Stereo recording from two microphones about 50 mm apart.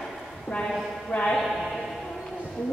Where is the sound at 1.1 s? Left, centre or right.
Left.